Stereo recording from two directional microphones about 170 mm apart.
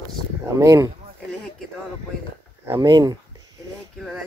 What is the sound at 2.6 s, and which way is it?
Speech, 15° right (ahead or behind).